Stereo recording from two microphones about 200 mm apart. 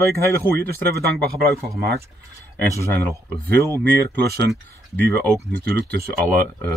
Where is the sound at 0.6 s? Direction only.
50° right (ahead or behind).